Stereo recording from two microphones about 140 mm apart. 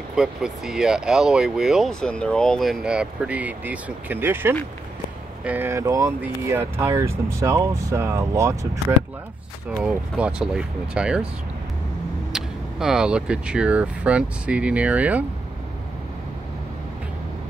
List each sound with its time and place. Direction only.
0.1 s speech: 5° right (ahead or behind); by 8.5 s 20° right (ahead or behind)
9.8 s speech: 10° right (ahead or behind)
12.3 s speech: 5° right (ahead or behind)